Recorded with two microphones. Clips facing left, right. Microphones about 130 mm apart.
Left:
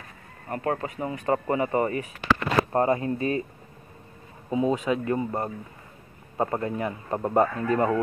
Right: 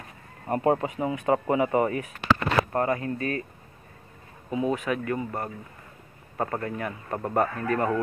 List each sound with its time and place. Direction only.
0.5 s speech: 20° right (ahead or behind)
0.9 s speech: 10° right (ahead or behind)
2.7 s speech: 25° left (ahead or behind)
4.5 s speech: 25° left (ahead or behind)